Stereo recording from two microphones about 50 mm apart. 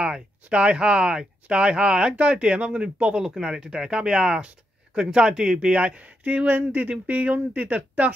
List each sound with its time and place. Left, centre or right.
0.0 s speech: centre
3.3 s speech: centre
6.2 s speech: right